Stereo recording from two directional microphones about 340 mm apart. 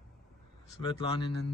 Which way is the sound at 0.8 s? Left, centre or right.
Centre.